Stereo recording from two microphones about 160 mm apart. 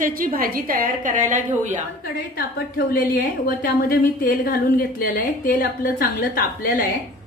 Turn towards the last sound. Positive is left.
turn(degrees=65)  # may be behind; listen again after turning